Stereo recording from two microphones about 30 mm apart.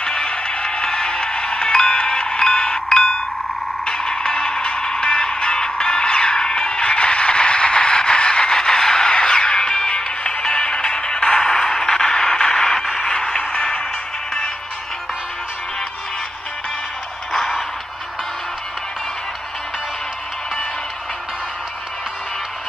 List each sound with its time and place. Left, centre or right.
0.0 s music: left
17.3 s music: centre